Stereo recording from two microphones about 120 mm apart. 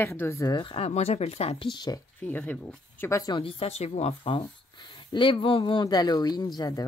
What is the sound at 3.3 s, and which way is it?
Speech, 50° left (ahead or behind).